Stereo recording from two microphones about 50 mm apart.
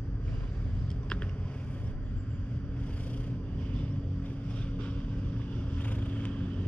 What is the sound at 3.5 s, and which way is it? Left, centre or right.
Vehicle, left.